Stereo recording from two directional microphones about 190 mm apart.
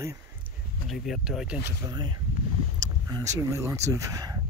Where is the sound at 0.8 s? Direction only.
Centre (ahead or behind).